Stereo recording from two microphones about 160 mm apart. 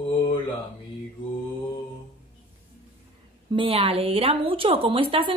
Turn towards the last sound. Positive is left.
turn(degrees=-35)  # may be behind; listen again after turning